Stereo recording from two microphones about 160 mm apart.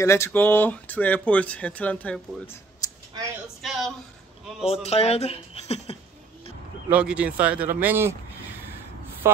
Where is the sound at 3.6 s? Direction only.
Centre (ahead or behind).